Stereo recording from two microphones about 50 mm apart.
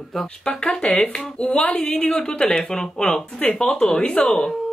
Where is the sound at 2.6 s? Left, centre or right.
Centre.